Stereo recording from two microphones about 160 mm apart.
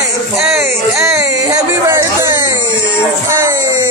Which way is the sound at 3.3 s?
20° right (ahead or behind).